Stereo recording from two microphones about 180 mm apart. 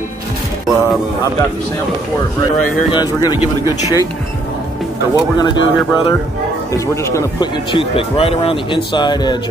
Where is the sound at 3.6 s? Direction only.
15° right (ahead or behind).